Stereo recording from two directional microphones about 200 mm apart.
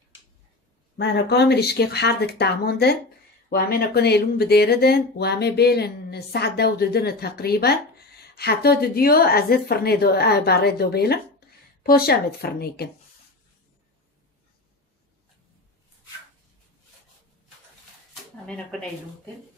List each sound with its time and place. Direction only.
0.9 s speech: 60° left (ahead or behind)